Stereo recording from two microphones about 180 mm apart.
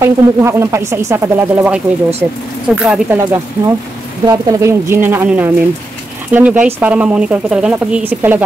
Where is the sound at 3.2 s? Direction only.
15° right (ahead or behind).